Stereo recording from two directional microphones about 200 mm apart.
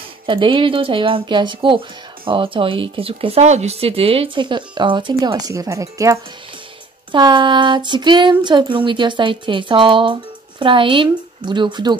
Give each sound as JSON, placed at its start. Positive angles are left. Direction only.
{"t": 0.3, "sound": "speech", "side_deg": -25}